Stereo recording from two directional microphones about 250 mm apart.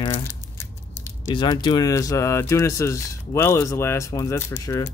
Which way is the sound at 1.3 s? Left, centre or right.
Centre.